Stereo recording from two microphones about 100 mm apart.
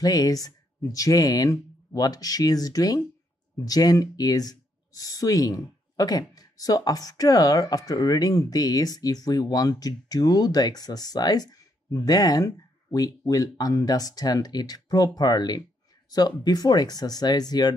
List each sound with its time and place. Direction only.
0.0 s speech: 40° left (ahead or behind)